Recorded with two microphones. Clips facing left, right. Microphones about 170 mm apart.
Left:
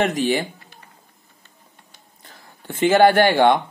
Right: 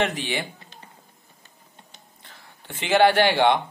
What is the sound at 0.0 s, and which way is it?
Speech, 45° left (ahead or behind).